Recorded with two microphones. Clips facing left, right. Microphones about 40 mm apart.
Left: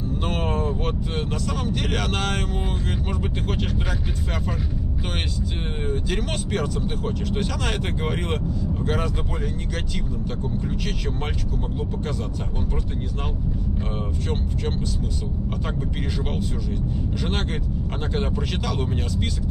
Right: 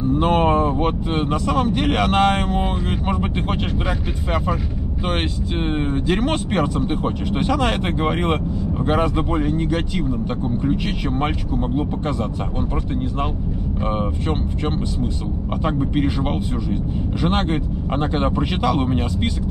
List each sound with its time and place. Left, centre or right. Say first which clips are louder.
0.2 s speech: right 9 dB; right
6.0 s speech: right 7 dB; right
15.6 s speech: right 9 dB; right